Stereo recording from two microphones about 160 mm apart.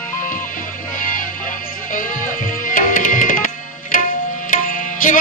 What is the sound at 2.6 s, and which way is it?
Tabla, 55° left (ahead or behind).